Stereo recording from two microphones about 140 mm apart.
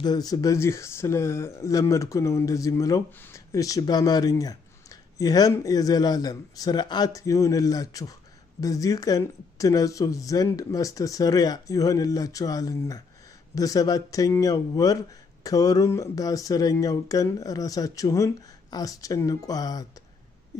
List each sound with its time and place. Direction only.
0.0 s speech: 30° left (ahead or behind)